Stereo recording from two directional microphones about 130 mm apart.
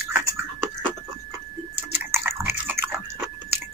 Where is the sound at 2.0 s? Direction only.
15° right (ahead or behind).